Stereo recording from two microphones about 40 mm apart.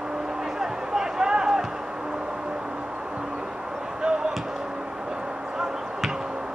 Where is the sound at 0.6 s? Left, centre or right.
Centre.